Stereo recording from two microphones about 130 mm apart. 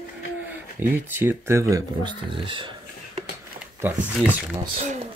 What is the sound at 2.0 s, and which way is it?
Speech, 40° right (ahead or behind).